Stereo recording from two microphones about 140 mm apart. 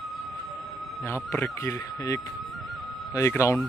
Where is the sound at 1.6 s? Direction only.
25° left (ahead or behind).